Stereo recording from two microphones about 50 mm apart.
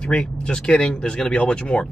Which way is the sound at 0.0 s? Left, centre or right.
Centre.